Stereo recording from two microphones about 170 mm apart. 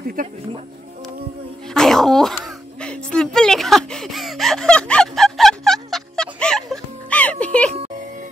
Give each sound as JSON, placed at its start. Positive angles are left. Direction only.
{"t": 0.0, "sound": "speech", "side_deg": -55}
{"t": 1.7, "sound": "dog", "side_deg": 0}
{"t": 2.8, "sound": "a sound", "side_deg": 5}